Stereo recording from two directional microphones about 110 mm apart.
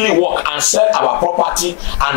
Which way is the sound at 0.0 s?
20° left (ahead or behind).